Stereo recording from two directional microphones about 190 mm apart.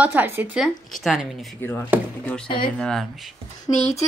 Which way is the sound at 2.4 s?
25° left (ahead or behind).